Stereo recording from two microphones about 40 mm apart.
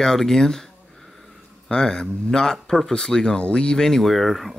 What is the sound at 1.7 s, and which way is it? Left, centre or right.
Speech, centre.